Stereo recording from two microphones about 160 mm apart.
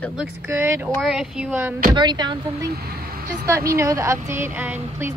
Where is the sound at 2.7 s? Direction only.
75° right (ahead or behind).